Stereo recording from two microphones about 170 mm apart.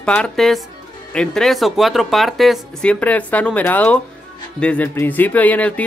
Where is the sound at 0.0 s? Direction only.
5° left (ahead or behind).